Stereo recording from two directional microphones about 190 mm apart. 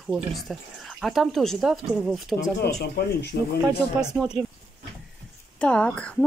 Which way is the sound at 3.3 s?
55° left (ahead or behind).